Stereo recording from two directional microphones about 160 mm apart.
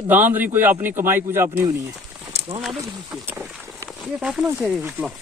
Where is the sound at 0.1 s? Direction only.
10° right (ahead or behind).